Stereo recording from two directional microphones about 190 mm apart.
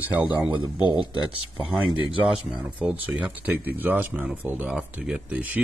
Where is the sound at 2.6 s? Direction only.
10° right (ahead or behind).